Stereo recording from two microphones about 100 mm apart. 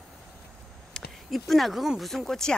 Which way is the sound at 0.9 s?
5° left (ahead or behind).